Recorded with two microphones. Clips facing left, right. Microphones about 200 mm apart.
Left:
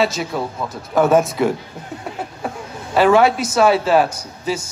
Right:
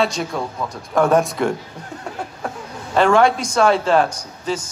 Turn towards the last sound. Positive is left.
turn(degrees=10)  # may be behind; listen again after turning